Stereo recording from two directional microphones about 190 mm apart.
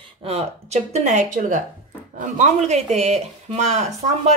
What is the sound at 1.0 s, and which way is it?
A woman's voice, 40° right (ahead or behind).